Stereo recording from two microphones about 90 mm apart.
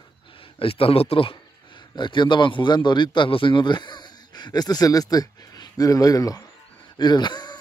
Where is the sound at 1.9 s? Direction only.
60° left (ahead or behind); by 6.5 s 40° left (ahead or behind).